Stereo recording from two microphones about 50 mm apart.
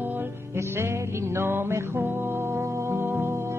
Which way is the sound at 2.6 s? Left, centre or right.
Right.